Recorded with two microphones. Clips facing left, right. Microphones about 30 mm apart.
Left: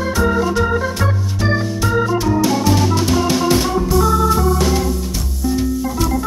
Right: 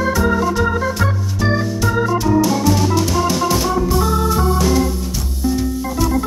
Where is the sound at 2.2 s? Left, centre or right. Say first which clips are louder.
Right 1 dB; centre.